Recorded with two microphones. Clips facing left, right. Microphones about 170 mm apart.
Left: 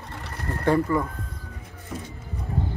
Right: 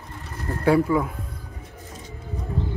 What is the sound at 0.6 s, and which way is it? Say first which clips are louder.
Speech: right 3 dB; 5° right (ahead or behind).